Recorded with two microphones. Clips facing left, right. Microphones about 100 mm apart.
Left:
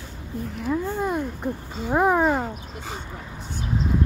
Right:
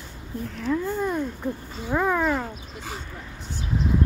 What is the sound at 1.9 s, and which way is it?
Speech, 35° left (ahead or behind).